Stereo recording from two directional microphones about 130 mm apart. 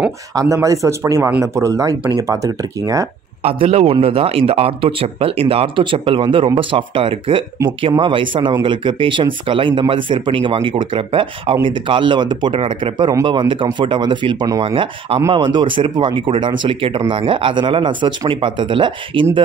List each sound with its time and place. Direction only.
0.3 s speech: 25° right (ahead or behind)
3.4 s speech: 50° right (ahead or behind)